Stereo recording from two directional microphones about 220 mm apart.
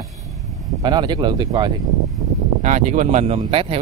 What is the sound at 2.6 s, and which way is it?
Speech, 35° right (ahead or behind).